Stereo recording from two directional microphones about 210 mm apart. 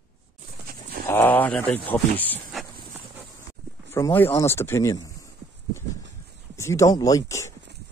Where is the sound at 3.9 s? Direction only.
10° left (ahead or behind).